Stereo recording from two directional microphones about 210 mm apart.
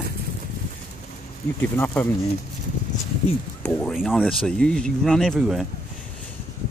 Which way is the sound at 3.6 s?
5° left (ahead or behind).